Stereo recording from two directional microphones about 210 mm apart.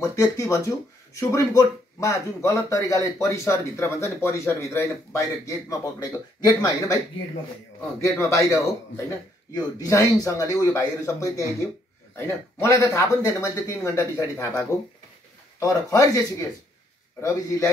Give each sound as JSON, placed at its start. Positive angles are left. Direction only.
{"t": 0.0, "sound": "speech", "side_deg": 15}
{"t": 8.0, "sound": "speech", "side_deg": 15}